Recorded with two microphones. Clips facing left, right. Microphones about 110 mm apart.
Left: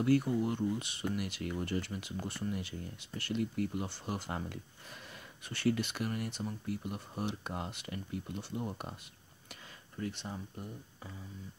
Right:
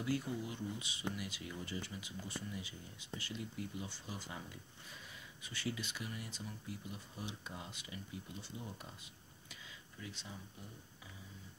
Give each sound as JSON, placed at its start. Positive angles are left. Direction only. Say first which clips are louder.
{"t": 0.0, "sound": "speech", "louder": "left 10 dB", "side_deg": 60}
{"t": 9.9, "sound": "speech", "louder": "left 11 dB", "side_deg": 55}